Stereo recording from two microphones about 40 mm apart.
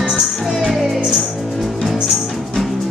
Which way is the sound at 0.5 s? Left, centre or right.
Centre.